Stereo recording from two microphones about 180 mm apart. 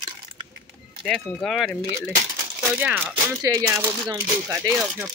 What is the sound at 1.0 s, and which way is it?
Speech, centre (ahead or behind).